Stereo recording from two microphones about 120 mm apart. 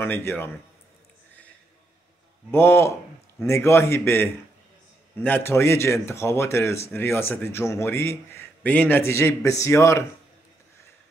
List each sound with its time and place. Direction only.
0.0 s a man's voice: 15° left (ahead or behind)
2.5 s a man's voice: 20° left (ahead or behind)